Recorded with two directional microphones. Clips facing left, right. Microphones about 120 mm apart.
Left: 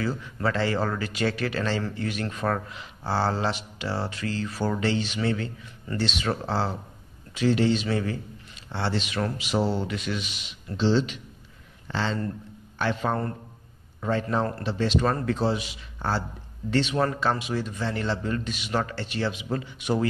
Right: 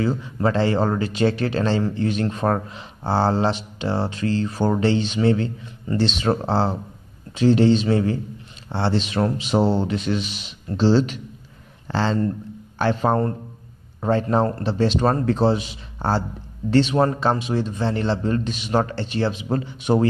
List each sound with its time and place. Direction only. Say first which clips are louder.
0.0 s speech: right 6 dB; 20° right (ahead or behind)